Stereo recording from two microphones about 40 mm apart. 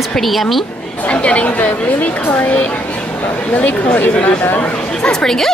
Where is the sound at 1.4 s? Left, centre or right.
Left.